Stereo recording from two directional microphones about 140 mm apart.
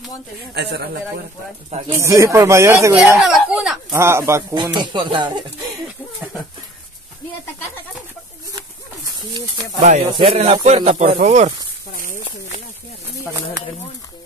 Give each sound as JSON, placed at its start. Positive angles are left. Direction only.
{"t": 1.9, "sound": "speech", "side_deg": -20}
{"t": 3.2, "sound": "speech", "side_deg": 0}
{"t": 3.9, "sound": "speech", "side_deg": -20}
{"t": 4.7, "sound": "speech", "side_deg": -35}
{"t": 9.8, "sound": "speech", "side_deg": -55}